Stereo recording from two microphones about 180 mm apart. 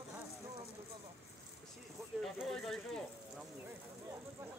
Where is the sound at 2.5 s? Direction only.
Centre (ahead or behind).